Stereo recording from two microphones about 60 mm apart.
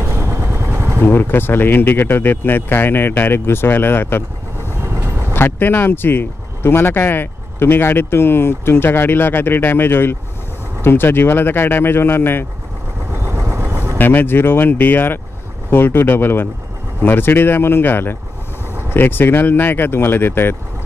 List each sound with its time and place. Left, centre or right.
0.0 s vehicle: right
1.0 s speech: left
4.7 s vehicle: right
5.3 s speech: left
13.1 s vehicle: right
13.9 s speech: left